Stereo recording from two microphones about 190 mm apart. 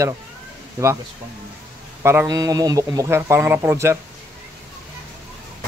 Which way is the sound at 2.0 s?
15° right (ahead or behind).